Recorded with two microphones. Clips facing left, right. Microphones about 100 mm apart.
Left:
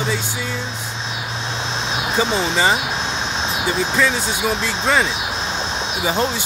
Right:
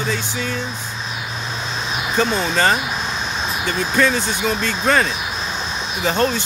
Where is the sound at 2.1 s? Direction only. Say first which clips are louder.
Right 1 dB; 20° left (ahead or behind).